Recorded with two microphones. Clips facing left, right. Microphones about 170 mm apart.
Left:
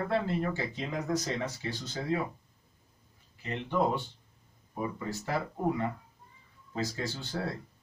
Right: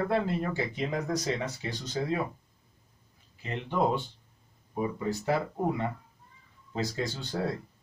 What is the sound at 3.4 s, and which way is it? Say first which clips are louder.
Speech: right 1 dB; 15° right (ahead or behind).